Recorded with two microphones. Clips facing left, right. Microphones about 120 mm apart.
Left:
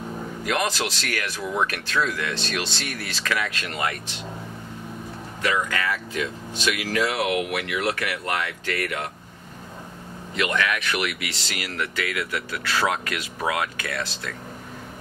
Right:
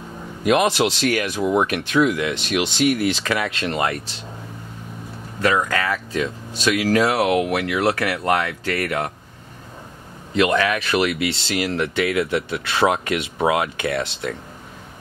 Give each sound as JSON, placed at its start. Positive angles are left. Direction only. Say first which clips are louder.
{"t": 0.5, "sound": "speech", "louder": "right 8 dB", "side_deg": -20}
{"t": 5.4, "sound": "speech", "louder": "right 5 dB", "side_deg": -40}
{"t": 10.3, "sound": "speech", "louder": "right 6 dB", "side_deg": -30}